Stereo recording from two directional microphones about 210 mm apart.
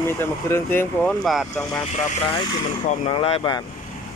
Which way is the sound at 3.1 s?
25° left (ahead or behind).